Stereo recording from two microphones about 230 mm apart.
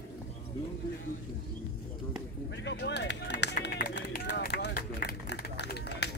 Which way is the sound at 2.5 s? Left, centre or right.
Left.